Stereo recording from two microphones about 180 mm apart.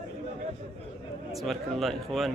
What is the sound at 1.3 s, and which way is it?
Speech, centre (ahead or behind).